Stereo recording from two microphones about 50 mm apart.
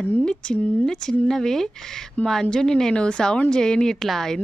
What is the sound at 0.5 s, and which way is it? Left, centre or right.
Speech, left.